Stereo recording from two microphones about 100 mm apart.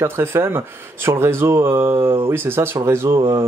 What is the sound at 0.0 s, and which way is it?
Speech, 25° right (ahead or behind).